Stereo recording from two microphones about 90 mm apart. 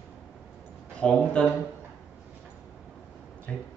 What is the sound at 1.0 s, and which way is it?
Speech, 10° left (ahead or behind).